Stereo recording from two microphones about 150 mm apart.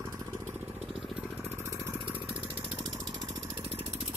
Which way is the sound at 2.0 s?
10° right (ahead or behind).